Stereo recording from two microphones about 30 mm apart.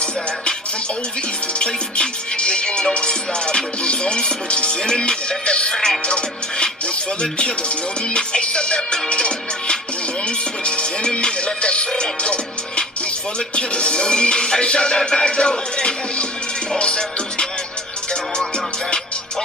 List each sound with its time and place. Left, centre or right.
1.6 s music: left
8.1 s music: left
11.1 s music: left